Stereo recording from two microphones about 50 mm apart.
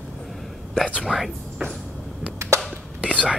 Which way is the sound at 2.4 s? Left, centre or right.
Right.